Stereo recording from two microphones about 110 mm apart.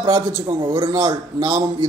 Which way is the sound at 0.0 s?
35° right (ahead or behind).